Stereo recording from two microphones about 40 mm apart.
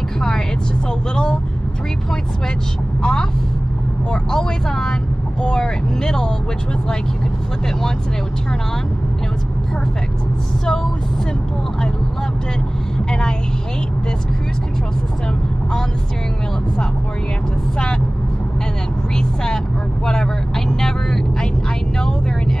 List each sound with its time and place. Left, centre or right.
1.1 s vehicle: left
3.0 s vehicle: centre
10.6 s speech: centre
19.1 s vehicle: centre